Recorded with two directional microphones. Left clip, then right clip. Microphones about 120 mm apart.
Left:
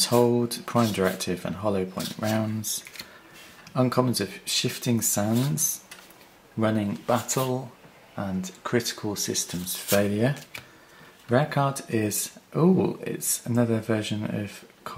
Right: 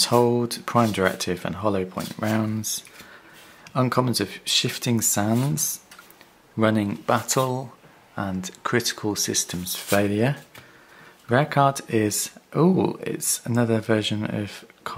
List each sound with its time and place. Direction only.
0.0 s speech: 35° right (ahead or behind)